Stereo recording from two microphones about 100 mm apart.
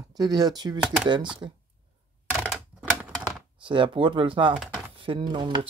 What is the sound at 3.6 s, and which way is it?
Speech, 55° right (ahead or behind).